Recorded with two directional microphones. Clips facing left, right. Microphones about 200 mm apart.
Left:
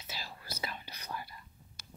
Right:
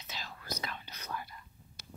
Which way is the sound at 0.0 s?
10° left (ahead or behind).